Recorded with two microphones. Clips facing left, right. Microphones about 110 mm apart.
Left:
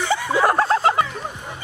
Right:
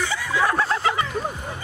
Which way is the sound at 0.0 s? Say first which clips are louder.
Left 4 dB; 30° left (ahead or behind).